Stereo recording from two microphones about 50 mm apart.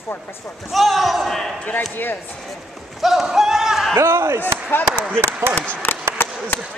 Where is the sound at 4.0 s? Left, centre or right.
Right.